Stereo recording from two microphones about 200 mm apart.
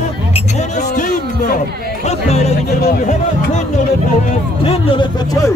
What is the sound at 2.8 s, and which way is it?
Speech, 45° left (ahead or behind).